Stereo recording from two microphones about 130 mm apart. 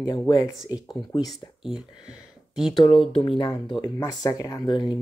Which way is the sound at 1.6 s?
5° right (ahead or behind).